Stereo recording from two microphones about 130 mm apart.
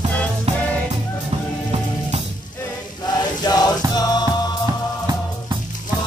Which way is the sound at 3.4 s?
30° left (ahead or behind).